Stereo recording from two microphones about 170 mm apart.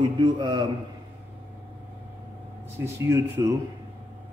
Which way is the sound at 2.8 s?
15° right (ahead or behind).